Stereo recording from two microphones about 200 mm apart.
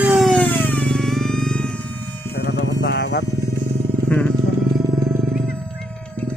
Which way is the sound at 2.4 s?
60° left (ahead or behind).